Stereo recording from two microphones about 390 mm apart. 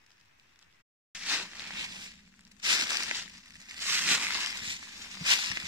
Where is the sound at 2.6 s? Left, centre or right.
Centre.